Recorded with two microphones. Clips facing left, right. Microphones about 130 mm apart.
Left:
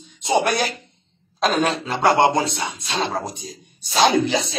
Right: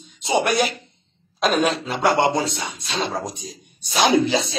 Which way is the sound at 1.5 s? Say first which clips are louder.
Right 1 dB; 10° right (ahead or behind).